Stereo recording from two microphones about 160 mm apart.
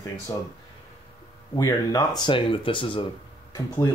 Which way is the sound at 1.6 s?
25° left (ahead or behind).